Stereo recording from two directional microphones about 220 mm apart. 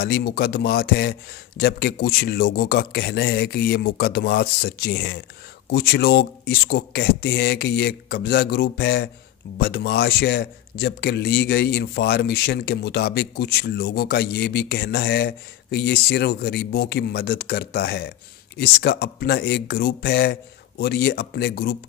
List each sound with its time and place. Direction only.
0.0 s speech: 45° left (ahead or behind)